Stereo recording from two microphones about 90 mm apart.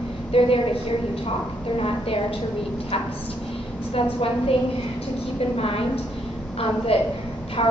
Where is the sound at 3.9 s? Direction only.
90° left.